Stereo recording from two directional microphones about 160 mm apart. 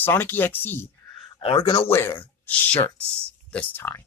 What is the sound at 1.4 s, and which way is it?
Speech, 35° left (ahead or behind).